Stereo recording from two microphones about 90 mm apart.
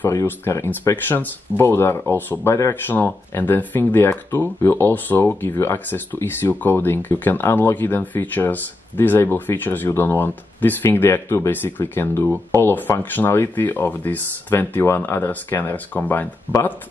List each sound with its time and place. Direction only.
0.1 s speech: 35° left (ahead or behind)
2.7 s speech: 20° left (ahead or behind)